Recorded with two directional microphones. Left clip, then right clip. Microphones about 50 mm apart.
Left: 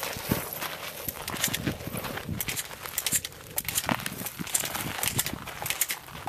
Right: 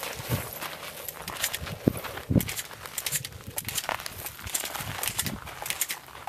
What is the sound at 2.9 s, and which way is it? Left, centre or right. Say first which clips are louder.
Crumpling: left 3 dB; centre.